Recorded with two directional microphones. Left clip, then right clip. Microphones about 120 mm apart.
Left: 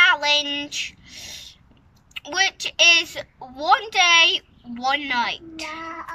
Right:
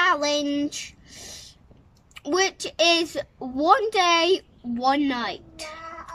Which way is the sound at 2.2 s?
40° right (ahead or behind).